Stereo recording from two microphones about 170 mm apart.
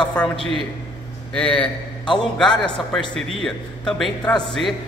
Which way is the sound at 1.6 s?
30° left (ahead or behind).